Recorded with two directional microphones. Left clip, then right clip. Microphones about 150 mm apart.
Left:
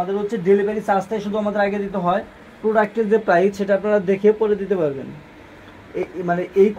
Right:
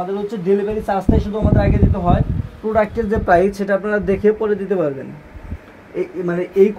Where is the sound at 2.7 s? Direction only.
35° right (ahead or behind).